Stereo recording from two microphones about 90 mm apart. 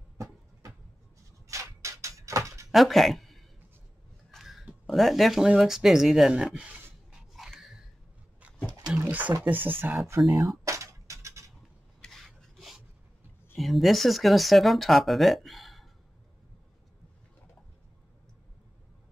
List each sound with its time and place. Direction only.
1.5 s a sound: 35° right (ahead or behind)
2.7 s speech: centre (ahead or behind)
4.3 s a sound: centre (ahead or behind)
4.8 s speech: centre (ahead or behind)
5.6 s writing: 5° right (ahead or behind)
8.9 s speech: 20° right (ahead or behind)
10.6 s a sound: 35° right (ahead or behind)
12.0 s filing: 5° left (ahead or behind)
13.6 s speech: centre (ahead or behind)